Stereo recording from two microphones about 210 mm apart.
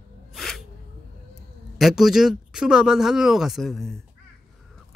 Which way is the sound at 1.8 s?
Centre (ahead or behind).